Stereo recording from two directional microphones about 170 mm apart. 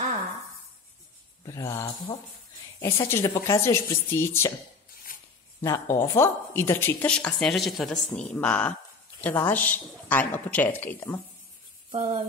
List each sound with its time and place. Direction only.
1.4 s a woman's voice: 20° left (ahead or behind)
5.1 s zipper: 55° left (ahead or behind)
5.6 s a woman's voice: 15° left (ahead or behind)
11.9 s a sound: 40° right (ahead or behind)